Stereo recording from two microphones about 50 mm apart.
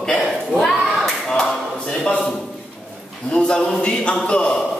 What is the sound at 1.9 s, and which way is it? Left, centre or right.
Speech, centre.